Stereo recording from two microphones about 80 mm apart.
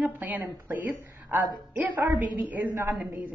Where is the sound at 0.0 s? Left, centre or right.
Right.